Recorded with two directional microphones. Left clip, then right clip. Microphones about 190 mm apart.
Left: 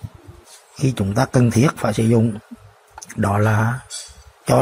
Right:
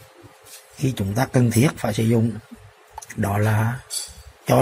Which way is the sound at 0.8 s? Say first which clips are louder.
Left 4 dB; 10° left (ahead or behind).